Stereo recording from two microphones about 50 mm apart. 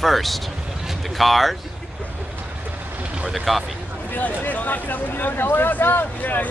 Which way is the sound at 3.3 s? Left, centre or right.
Centre.